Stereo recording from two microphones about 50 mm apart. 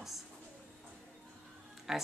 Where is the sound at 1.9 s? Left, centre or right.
Centre.